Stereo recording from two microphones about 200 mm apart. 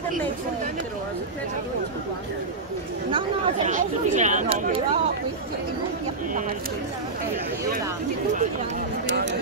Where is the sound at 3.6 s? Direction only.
35° right (ahead or behind).